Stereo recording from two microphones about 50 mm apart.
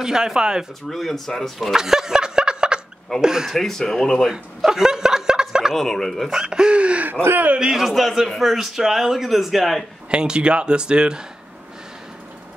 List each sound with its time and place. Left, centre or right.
0.0 s speech: centre
0.8 s speech: centre
1.7 s snicker: centre
3.2 s speech: centre
3.5 s speech: centre
4.2 s chuckle: centre
5.8 s speech: centre
6.3 s speech: centre
7.7 s speech: centre
10.1 s speech: centre